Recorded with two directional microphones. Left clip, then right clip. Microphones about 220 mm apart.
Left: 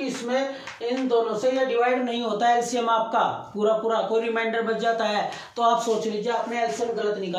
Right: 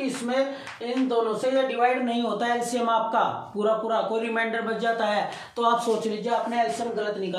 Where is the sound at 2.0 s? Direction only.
5° left (ahead or behind).